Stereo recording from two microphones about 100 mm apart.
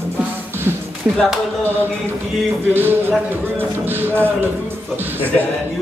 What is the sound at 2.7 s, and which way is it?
Speech, 20° right (ahead or behind).